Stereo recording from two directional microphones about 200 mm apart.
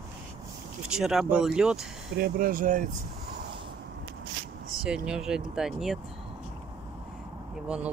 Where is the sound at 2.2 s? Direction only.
45° right (ahead or behind).